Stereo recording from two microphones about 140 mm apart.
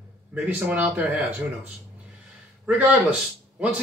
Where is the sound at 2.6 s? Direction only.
10° right (ahead or behind).